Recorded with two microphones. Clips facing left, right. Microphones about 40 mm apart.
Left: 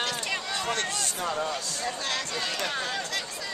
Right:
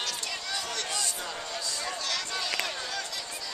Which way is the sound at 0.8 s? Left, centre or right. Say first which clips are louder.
Left 4 dB; left.